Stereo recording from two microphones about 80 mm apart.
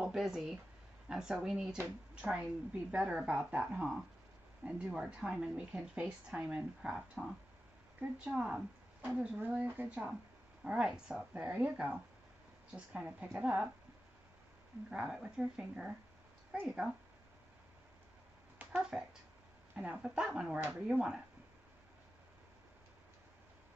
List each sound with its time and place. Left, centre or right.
0.0 s speech: centre
8.3 s a woman's voice: centre
10.6 s speech: centre
14.9 s speech: centre
18.7 s speech: centre
19.7 s speech: right
20.3 s speech: centre